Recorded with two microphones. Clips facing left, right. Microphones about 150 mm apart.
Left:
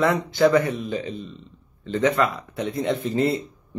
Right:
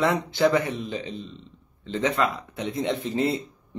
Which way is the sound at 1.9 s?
25° right (ahead or behind).